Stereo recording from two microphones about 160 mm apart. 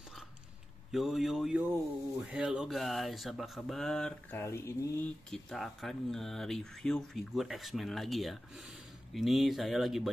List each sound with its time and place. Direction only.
0.9 s speech: centre (ahead or behind)
4.4 s speech: 15° left (ahead or behind)
5.3 s speech: centre (ahead or behind)